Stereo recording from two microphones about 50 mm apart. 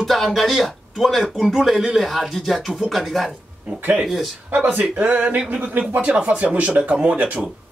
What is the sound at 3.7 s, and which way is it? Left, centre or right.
Speech, centre.